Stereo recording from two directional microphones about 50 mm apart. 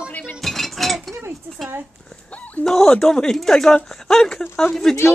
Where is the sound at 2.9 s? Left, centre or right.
Centre.